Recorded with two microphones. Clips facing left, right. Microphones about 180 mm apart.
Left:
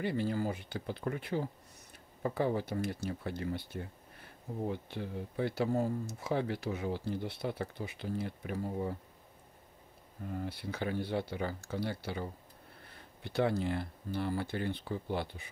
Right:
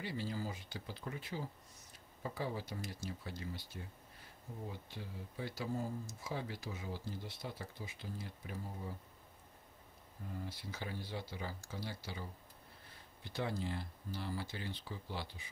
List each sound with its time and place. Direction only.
0.0 s speech: 55° left (ahead or behind)
10.4 s speech: 65° left (ahead or behind)